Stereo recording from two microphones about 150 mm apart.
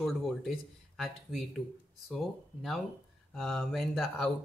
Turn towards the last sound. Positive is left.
turn(degrees=5)  # may be behind; listen again after turning